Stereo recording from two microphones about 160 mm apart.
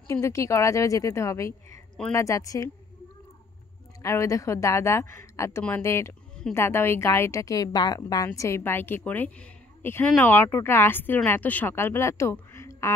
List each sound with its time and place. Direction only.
0.1 s a woman's voice: 20° left (ahead or behind)
4.0 s a woman's voice: 20° left (ahead or behind)